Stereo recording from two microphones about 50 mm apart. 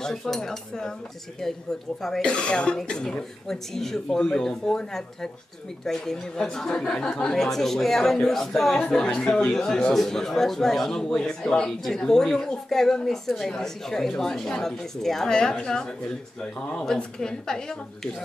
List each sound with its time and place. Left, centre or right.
0.0 s speech: centre
2.2 s speech: centre